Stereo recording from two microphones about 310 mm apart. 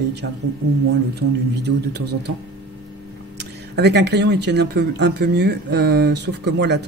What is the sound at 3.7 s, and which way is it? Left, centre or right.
Speech, right.